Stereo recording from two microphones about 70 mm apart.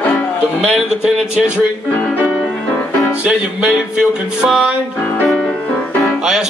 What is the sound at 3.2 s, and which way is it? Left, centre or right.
Music, centre.